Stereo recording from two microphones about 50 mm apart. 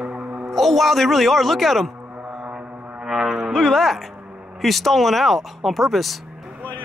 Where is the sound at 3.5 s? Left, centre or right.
Centre.